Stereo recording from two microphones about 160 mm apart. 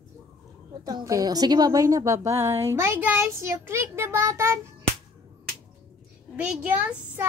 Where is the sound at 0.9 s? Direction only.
25° right (ahead or behind).